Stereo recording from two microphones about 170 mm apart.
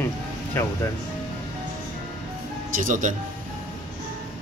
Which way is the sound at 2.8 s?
50° right (ahead or behind).